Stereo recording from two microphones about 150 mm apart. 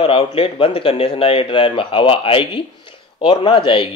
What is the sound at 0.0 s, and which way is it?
Speech, 40° left (ahead or behind).